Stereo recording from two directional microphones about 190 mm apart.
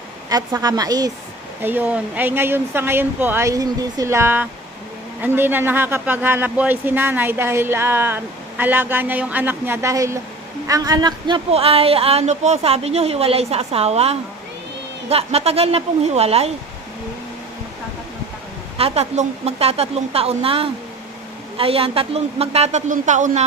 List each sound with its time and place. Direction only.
0.3 s a woman's voice: 20° right (ahead or behind)
18.8 s speech: 30° right (ahead or behind)